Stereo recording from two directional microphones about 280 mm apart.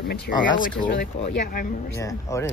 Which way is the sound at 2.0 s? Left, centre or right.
Centre.